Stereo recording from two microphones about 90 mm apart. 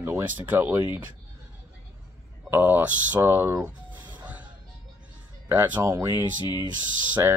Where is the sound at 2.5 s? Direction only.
20° right (ahead or behind).